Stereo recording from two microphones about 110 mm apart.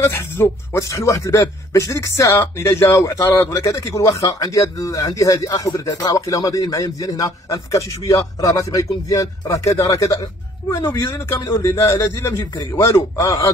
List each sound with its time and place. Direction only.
0.0 s speech: 25° left (ahead or behind)